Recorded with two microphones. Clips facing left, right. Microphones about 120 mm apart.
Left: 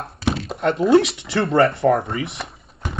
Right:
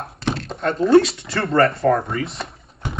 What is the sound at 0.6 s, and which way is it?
Speech, 25° left (ahead or behind).